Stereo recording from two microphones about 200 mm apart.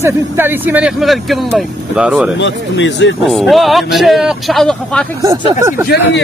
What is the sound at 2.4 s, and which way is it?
Speech, 65° left (ahead or behind).